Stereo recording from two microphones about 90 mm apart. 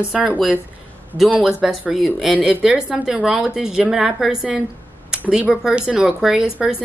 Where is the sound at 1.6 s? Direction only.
5° right (ahead or behind).